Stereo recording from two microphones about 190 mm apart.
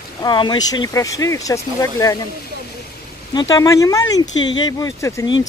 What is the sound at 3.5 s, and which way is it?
Speech, 20° left (ahead or behind).